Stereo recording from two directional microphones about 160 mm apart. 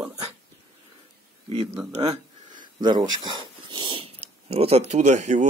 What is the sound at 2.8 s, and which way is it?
Speech, 30° right (ahead or behind).